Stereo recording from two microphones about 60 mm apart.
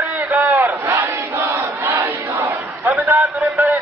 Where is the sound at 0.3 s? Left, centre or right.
Right.